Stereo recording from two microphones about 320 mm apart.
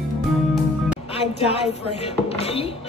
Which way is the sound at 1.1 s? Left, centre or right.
Centre.